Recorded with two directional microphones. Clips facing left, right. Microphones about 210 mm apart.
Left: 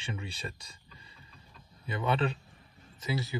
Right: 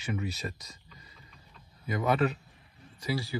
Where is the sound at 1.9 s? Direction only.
30° left (ahead or behind).